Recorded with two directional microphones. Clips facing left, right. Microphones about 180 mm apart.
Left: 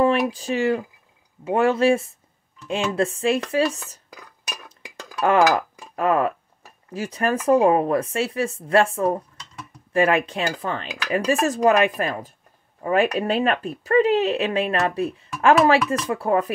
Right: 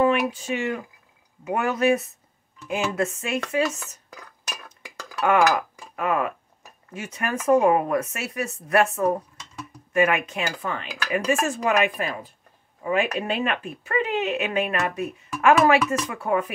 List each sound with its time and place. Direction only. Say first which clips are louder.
0.0 s speech: left 2 dB; 35° left (ahead or behind)
5.2 s speech: left 2 dB; 35° left (ahead or behind)